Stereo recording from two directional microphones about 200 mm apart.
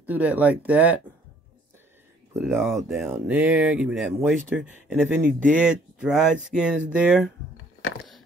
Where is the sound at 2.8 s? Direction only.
Centre (ahead or behind).